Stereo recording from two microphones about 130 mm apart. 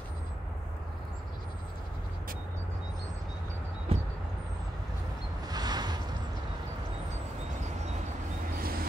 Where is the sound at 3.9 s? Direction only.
50° right (ahead or behind).